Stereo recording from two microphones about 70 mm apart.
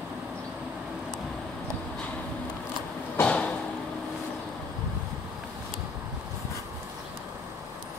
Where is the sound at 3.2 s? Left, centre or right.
Centre.